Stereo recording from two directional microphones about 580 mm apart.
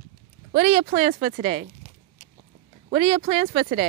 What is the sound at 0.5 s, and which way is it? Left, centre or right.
Speech, centre.